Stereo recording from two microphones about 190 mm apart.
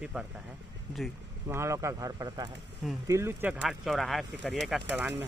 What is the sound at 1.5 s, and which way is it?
Speech, 15° right (ahead or behind).